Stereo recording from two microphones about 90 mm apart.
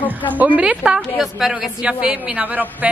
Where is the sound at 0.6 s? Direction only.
15° right (ahead or behind).